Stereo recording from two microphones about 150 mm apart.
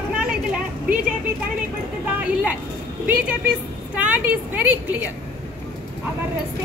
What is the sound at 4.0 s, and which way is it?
A woman's voice, 10° right (ahead or behind).